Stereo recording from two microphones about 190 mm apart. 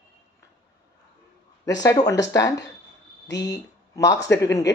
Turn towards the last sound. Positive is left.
turn(degrees=15)  # may be behind; listen again after turning